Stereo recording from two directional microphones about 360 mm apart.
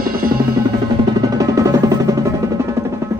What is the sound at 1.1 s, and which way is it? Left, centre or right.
Music, centre.